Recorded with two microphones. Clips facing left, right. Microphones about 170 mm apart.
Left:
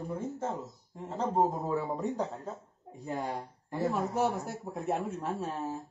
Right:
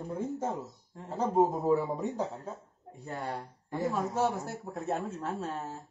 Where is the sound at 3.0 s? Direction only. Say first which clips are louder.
Left 2 dB; 15° left (ahead or behind).